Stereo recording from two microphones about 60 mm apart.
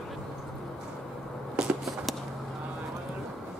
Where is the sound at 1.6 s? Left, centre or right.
Centre.